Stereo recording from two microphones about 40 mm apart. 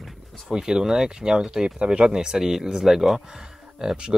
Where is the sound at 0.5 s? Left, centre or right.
Centre.